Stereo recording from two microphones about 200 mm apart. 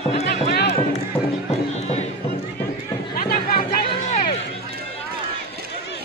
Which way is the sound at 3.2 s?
45° left (ahead or behind).